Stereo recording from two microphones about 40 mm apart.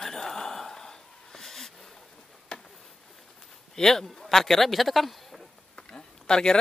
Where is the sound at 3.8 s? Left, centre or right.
Centre.